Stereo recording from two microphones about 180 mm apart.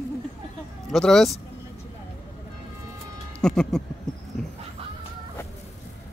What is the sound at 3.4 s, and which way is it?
Music, 5° left (ahead or behind).